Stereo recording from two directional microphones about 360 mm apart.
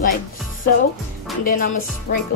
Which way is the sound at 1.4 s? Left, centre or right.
Left.